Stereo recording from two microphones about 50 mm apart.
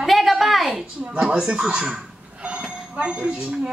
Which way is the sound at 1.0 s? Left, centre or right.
Centre.